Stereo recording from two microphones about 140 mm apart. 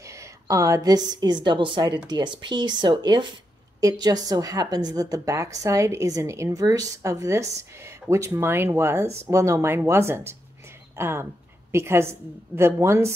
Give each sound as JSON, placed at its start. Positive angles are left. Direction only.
{"t": 0.0, "sound": "a woman's voice", "side_deg": -20}